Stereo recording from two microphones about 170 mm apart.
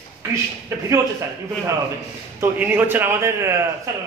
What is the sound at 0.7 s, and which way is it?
Speech, 15° right (ahead or behind).